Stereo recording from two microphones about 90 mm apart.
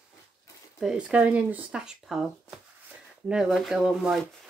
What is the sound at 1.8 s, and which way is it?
Speech, 5° right (ahead or behind).